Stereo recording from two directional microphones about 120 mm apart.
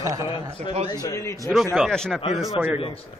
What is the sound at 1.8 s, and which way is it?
Speech, 5° left (ahead or behind).